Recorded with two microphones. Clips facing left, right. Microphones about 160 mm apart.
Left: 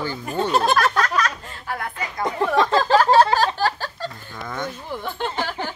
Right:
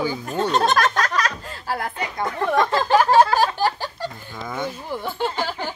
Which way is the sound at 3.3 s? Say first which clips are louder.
Right 1 dB; 15° right (ahead or behind).